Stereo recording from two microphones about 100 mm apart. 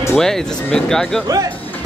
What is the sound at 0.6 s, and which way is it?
Speech, 5° left (ahead or behind).